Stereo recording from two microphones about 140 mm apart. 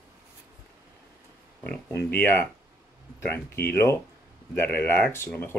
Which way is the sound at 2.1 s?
10° left (ahead or behind).